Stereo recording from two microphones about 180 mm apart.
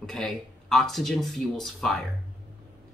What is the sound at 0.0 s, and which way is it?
Speech, centre (ahead or behind).